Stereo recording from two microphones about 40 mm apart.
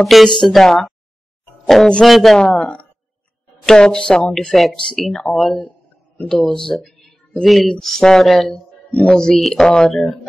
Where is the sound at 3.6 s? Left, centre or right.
Centre.